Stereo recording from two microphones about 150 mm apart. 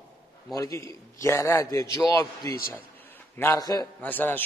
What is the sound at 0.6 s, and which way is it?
A man's voice, 20° left (ahead or behind).